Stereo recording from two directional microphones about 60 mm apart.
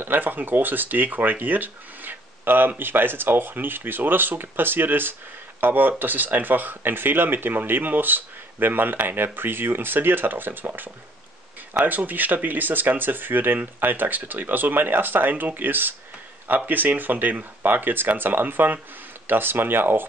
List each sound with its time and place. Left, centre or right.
0.0 s speech: right